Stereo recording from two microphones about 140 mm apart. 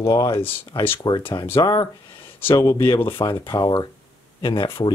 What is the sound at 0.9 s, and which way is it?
Speech, 35° left (ahead or behind).